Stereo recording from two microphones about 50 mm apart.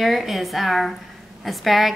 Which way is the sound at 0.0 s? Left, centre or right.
Centre.